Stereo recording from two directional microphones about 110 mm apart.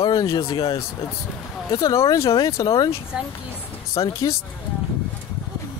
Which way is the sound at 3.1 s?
10° right (ahead or behind).